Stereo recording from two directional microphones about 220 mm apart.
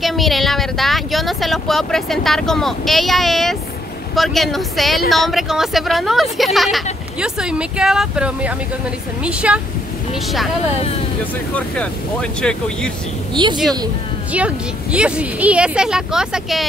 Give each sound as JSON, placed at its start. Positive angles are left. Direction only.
{"t": 0.0, "sound": "speech", "side_deg": 0}
{"t": 10.8, "sound": "speech", "side_deg": 25}
{"t": 11.5, "sound": "speech", "side_deg": 5}
{"t": 13.3, "sound": "a woman's voice", "side_deg": -20}
{"t": 14.3, "sound": "speech", "side_deg": -5}